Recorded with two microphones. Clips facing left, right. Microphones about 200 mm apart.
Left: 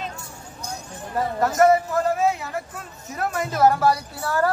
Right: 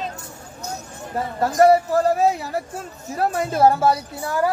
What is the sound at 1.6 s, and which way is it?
A woman's voice, 35° right (ahead or behind).